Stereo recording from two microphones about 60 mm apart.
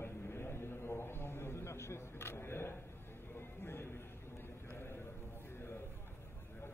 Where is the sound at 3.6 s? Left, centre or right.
Left.